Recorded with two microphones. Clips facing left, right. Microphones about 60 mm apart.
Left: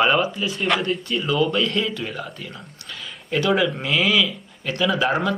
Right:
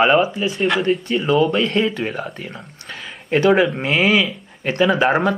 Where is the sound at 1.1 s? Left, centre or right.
Right.